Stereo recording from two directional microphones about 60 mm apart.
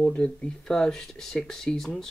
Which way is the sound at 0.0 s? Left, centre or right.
Left.